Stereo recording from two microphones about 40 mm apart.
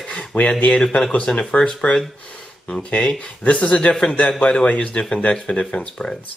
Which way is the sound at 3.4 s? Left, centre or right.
Left.